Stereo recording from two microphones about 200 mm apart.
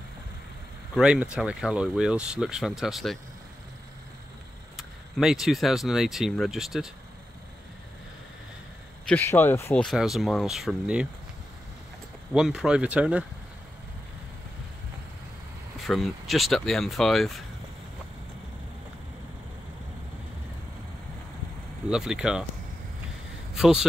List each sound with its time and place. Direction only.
0.9 s speech: 5° right (ahead or behind)
4.7 s speech: centre (ahead or behind)
9.0 s speech: 10° left (ahead or behind)
9.8 s speech: centre (ahead or behind)
12.4 s speech: 5° right (ahead or behind)
15.9 s speech: centre (ahead or behind)
21.8 s speech: 5° right (ahead or behind)
23.5 s speech: 5° right (ahead or behind)